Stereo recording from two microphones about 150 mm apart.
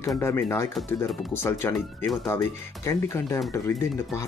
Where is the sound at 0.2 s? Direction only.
15° left (ahead or behind).